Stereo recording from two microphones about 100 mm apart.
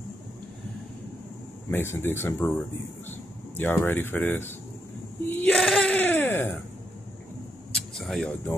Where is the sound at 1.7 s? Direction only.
20° left (ahead or behind).